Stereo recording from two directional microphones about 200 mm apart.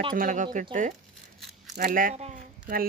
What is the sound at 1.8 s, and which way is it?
Speech, 45° right (ahead or behind).